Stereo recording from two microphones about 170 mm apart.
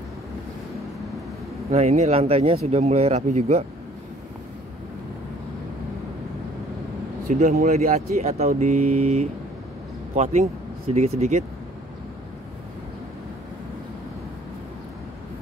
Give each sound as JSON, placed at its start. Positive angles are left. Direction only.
{"t": 1.7, "sound": "speech", "side_deg": -40}
{"t": 7.2, "sound": "speech", "side_deg": -50}